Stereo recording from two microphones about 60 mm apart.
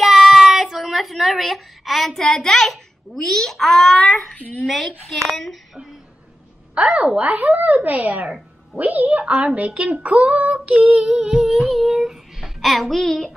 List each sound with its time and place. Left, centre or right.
0.0 s child singing: centre
4.7 s speech: centre
6.7 s a woman's voice: centre
11.1 s speech: centre